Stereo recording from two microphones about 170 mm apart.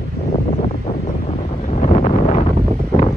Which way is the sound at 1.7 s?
40° left (ahead or behind).